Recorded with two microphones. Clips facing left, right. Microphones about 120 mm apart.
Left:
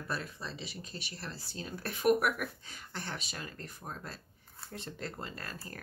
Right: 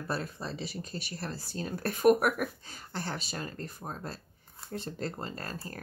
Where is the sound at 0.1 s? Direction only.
40° right (ahead or behind).